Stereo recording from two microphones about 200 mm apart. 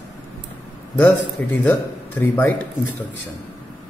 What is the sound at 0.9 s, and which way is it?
A man's voice, 10° left (ahead or behind).